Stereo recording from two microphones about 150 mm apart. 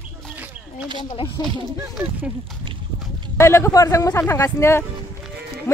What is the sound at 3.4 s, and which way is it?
Speech, 15° left (ahead or behind).